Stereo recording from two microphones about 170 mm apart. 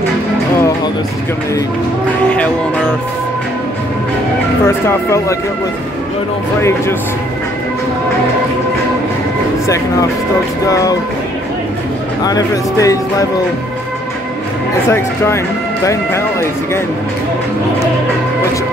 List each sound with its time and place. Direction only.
4.6 s speech: 15° left (ahead or behind)
10.7 s speech: 20° left (ahead or behind)
12.2 s speech: 20° left (ahead or behind)
14.9 s speech: 15° left (ahead or behind)